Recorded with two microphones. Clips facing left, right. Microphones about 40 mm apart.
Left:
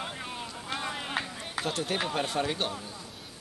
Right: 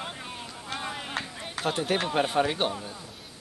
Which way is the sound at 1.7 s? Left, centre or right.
Centre.